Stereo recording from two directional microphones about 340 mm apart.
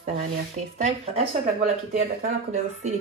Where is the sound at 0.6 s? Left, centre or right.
Right.